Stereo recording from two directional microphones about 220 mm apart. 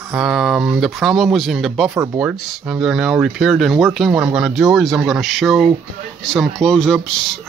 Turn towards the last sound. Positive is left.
turn(degrees=0)  # may be behind; listen again after turning